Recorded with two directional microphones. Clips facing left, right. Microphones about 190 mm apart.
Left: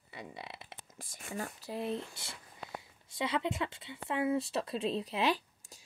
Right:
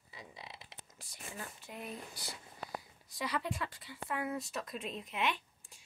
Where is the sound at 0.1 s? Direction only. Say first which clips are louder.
Left 6 dB; 65° left (ahead or behind).